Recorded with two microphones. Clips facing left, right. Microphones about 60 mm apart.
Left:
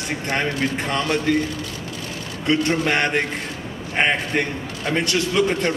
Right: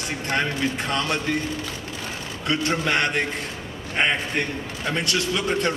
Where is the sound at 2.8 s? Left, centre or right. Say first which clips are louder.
Left 2 dB; left.